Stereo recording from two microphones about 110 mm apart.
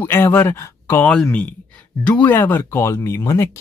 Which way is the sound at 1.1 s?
10° left (ahead or behind).